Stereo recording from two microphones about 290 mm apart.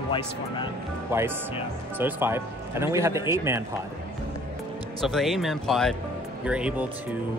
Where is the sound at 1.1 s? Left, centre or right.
Centre.